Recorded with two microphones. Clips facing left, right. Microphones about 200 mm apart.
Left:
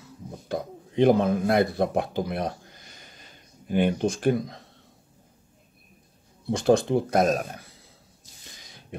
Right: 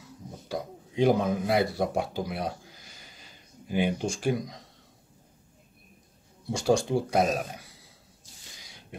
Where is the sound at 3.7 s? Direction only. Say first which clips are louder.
Left 4 dB; 55° left (ahead or behind).